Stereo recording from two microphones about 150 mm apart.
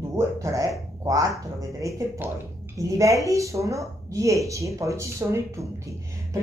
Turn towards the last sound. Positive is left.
turn(degrees=-20)  # may be behind; listen again after turning